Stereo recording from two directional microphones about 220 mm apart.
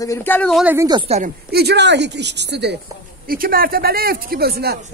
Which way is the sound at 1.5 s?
50° right (ahead or behind).